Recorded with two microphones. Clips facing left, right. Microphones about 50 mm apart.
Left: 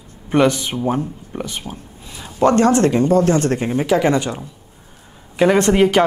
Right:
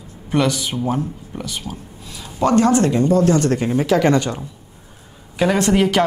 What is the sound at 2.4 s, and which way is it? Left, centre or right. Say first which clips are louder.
Speech: left 2 dB; left.